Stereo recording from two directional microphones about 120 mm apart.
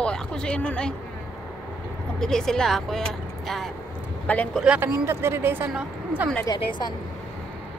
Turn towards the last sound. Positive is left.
turn(degrees=40)  # may be behind; listen again after turning